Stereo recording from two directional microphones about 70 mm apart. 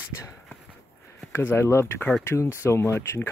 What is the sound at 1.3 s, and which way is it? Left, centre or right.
Speech, left.